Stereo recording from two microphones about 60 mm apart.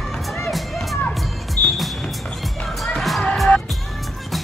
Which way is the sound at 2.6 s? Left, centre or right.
Centre.